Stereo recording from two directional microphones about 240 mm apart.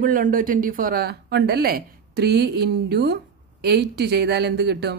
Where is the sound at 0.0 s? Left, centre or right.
Right.